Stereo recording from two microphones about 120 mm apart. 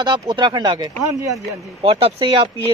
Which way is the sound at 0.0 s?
35° right (ahead or behind).